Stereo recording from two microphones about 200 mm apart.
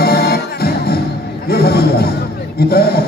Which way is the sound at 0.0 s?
50° left (ahead or behind).